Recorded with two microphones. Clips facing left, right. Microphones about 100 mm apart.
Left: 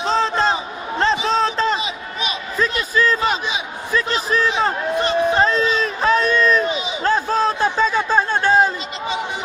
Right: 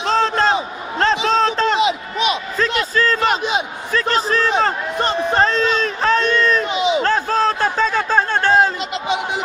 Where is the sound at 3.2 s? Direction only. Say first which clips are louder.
Right 3 dB; 55° right (ahead or behind).